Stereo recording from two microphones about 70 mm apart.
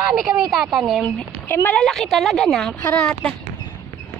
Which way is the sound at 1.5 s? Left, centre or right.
Left.